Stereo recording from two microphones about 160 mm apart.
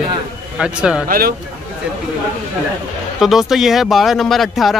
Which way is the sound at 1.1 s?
70° right (ahead or behind).